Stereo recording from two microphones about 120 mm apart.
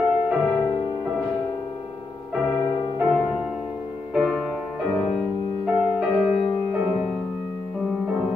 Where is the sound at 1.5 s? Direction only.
40° left (ahead or behind).